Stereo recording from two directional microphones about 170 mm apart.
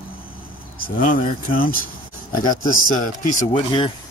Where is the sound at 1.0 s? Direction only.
55° left (ahead or behind).